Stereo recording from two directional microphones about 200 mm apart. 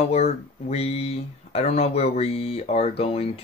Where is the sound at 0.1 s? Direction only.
30° left (ahead or behind).